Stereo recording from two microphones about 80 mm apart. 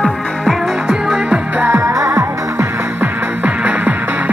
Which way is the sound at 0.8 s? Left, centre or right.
Centre.